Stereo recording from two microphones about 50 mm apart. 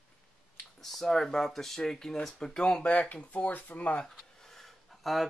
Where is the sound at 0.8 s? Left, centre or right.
Centre; by 4.0 s left.